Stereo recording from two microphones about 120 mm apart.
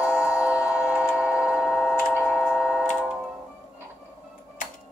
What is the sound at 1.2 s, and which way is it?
Tick-tock, 10° right (ahead or behind).